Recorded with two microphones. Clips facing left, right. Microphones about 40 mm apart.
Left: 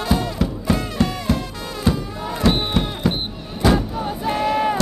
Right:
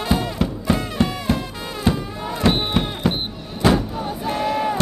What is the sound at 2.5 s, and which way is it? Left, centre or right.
Music, centre.